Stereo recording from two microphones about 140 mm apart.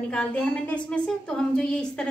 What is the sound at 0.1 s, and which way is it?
A woman's voice, 10° left (ahead or behind).